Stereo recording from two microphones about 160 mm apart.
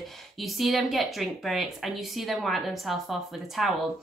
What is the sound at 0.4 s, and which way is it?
A woman's voice, centre (ahead or behind).